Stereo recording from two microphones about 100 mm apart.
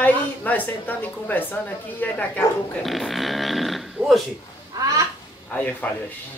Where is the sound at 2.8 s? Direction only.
Centre (ahead or behind).